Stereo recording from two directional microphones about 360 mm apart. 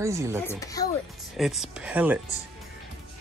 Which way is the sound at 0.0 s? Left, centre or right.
Centre.